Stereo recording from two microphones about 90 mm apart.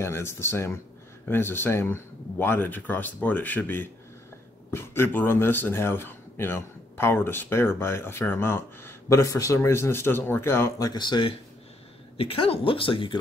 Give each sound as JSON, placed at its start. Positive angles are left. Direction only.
{"t": 0.0, "sound": "speech", "side_deg": 30}
{"t": 10.8, "sound": "speech", "side_deg": 50}
{"t": 12.2, "sound": "speech", "side_deg": 85}